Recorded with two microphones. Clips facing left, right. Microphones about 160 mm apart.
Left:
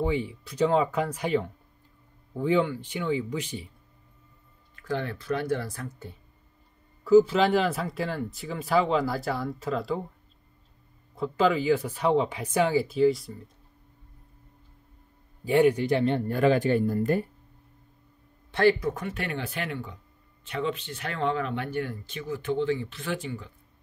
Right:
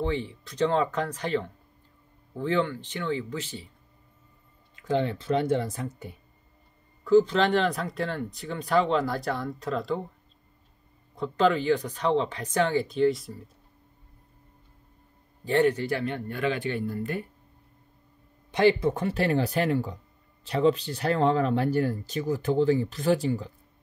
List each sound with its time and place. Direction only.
0.0 s speech: 10° left (ahead or behind)
4.7 s speech: 20° right (ahead or behind)
7.1 s speech: 5° left (ahead or behind)
11.1 s speech: 5° left (ahead or behind)
15.4 s speech: 10° left (ahead or behind); by 17.3 s 40° left (ahead or behind)
18.5 s speech: 20° right (ahead or behind); by 23.5 s 35° right (ahead or behind)